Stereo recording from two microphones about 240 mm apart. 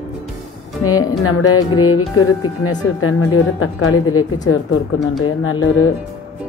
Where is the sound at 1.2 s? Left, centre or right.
Left.